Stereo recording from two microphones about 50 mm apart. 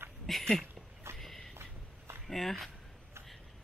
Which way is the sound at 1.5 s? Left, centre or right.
Right.